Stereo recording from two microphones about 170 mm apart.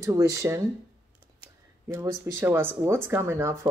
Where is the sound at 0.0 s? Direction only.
20° right (ahead or behind).